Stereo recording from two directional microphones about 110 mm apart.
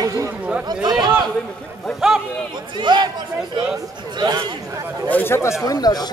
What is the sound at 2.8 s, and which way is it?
Speech, 40° right (ahead or behind).